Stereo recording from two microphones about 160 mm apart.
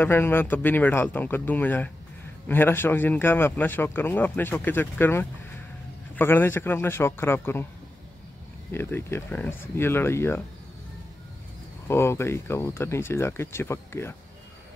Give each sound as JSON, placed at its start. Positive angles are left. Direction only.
{"t": 0.0, "sound": "speech", "side_deg": 15}
{"t": 8.7, "sound": "speech", "side_deg": 15}
{"t": 11.9, "sound": "speech", "side_deg": 15}